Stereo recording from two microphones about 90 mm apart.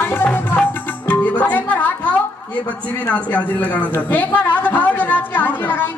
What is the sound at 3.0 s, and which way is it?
A woman's voice, 15° left (ahead or behind).